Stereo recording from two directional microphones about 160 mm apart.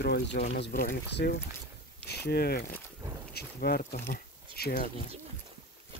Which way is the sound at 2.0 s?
85° left.